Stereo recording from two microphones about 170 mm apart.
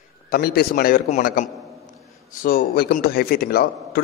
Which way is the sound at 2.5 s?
60° left (ahead or behind).